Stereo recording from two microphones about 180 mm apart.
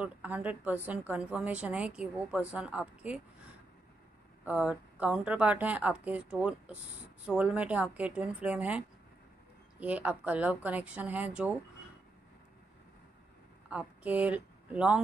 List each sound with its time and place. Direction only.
0.0 s a woman's voice: 10° right (ahead or behind)
4.5 s a woman's voice: 5° right (ahead or behind)
13.7 s speech: 10° right (ahead or behind)